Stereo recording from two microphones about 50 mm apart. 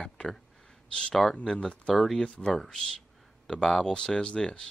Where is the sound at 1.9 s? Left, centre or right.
Centre.